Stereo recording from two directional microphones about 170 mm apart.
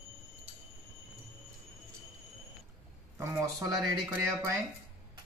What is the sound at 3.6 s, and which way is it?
Speech, 20° right (ahead or behind).